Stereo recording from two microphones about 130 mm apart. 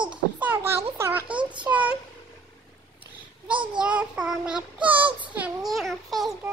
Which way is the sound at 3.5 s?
40° right (ahead or behind).